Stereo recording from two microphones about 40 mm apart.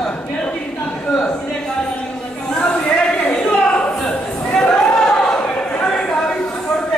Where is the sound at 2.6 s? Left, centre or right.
Left.